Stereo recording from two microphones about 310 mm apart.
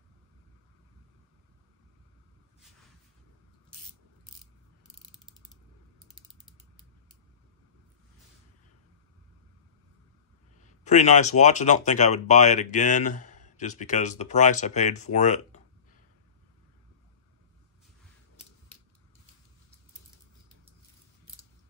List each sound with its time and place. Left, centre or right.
10.8 s speech: left